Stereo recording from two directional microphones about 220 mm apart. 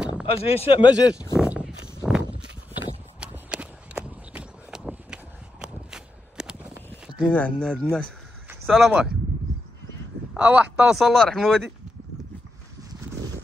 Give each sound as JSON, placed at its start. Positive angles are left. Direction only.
{"t": 0.3, "sound": "speech", "side_deg": 25}
{"t": 1.4, "sound": "a sound", "side_deg": -5}
{"t": 2.0, "sound": "walk", "side_deg": 0}
{"t": 3.2, "sound": "run", "side_deg": -5}
{"t": 7.2, "sound": "speech", "side_deg": 5}
{"t": 10.3, "sound": "speech", "side_deg": -5}